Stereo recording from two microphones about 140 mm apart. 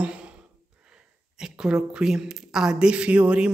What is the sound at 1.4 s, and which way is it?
Speech, 5° right (ahead or behind).